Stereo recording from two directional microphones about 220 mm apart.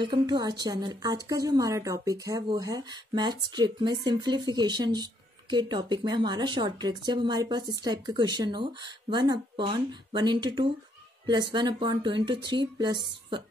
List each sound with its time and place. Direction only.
0.0 s a woman's voice: 20° right (ahead or behind)